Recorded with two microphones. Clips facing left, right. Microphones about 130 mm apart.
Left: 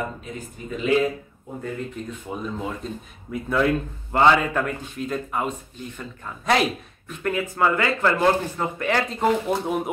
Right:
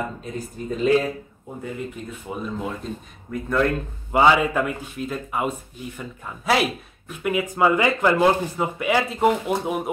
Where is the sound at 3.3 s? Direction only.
5° left (ahead or behind).